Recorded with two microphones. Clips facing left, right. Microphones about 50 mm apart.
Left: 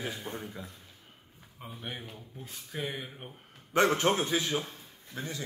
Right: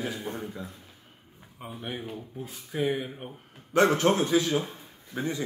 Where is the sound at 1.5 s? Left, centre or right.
Centre.